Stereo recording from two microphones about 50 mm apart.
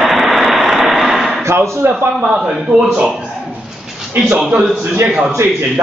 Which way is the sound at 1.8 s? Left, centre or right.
Right.